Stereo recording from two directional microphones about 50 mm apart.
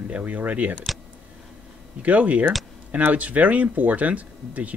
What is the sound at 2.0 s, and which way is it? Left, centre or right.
Speech, right.